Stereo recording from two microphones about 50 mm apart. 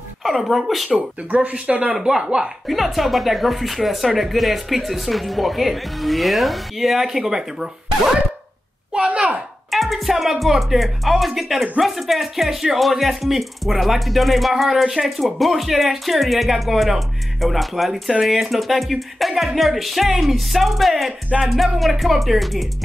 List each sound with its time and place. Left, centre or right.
0.2 s speech: centre
0.8 s speech: right; by 2.5 s centre
2.7 s speech: centre
8.9 s a sound: centre
9.7 s speech: centre